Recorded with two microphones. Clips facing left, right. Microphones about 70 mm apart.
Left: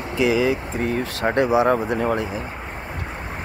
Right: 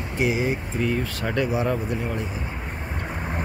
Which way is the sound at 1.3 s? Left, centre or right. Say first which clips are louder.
Left 6 dB; left.